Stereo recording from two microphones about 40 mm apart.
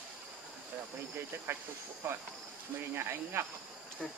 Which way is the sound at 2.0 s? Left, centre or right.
Right.